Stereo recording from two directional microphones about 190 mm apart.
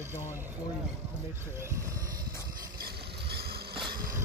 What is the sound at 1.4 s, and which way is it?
Speech, 15° right (ahead or behind).